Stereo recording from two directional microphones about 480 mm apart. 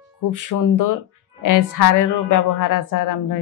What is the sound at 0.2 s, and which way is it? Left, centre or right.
A woman's voice, left.